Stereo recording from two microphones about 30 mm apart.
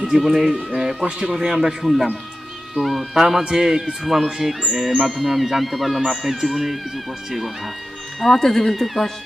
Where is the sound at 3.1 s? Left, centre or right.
Centre.